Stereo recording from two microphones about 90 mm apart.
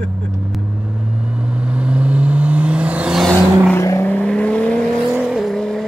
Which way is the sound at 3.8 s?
30° left (ahead or behind).